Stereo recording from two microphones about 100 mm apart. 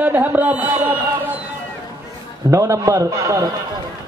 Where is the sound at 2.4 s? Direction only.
30° right (ahead or behind).